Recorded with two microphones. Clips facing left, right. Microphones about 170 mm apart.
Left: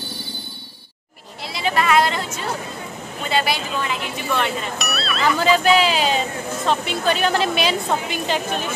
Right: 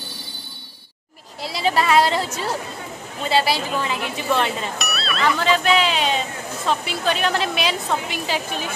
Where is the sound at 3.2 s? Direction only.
30° right (ahead or behind).